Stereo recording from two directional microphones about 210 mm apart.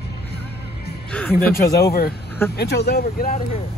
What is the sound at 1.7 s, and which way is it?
Speech, 50° left (ahead or behind).